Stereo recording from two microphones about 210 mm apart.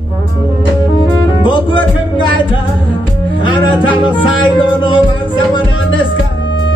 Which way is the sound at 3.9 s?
20° left (ahead or behind).